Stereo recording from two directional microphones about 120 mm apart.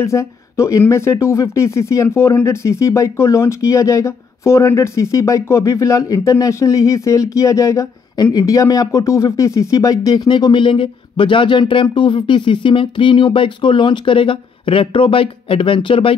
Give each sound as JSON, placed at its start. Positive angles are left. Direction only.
{"t": 0.0, "sound": "speech", "side_deg": 25}